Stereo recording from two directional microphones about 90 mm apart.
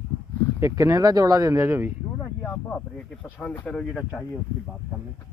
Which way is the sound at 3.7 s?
10° left (ahead or behind).